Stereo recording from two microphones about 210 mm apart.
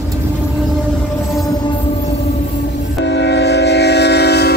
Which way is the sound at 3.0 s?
55° left (ahead or behind).